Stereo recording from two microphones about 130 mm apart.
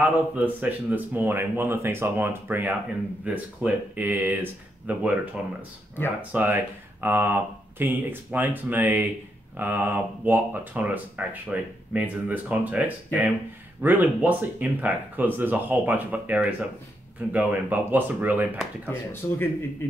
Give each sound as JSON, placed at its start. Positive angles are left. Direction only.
{"t": 0.0, "sound": "speech", "side_deg": -10}
{"t": 18.9, "sound": "speech", "side_deg": 15}